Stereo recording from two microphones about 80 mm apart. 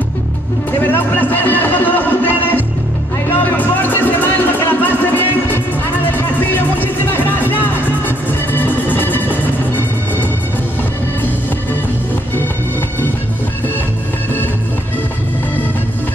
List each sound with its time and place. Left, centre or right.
0.7 s music: left